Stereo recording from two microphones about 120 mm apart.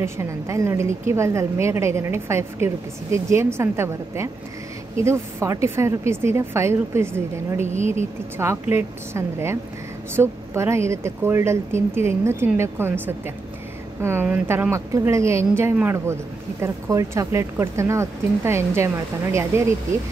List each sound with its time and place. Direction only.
0.0 s a woman's voice: 25° right (ahead or behind)
7.6 s speech: 80° right
8.4 s a woman's voice: 20° right (ahead or behind)